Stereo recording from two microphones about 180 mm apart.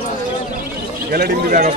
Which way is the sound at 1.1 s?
55° right (ahead or behind).